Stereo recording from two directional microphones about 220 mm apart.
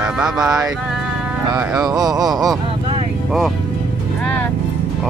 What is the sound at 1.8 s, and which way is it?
Speech, 15° right (ahead or behind).